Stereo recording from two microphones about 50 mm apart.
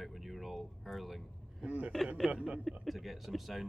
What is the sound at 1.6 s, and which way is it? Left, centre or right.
Speech, right.